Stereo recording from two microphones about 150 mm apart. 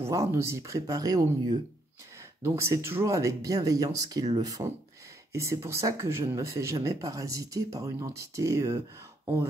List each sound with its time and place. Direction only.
0.0 s speech: 20° right (ahead or behind)